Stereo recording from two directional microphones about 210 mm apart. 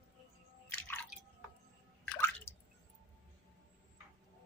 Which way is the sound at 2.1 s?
10° left (ahead or behind).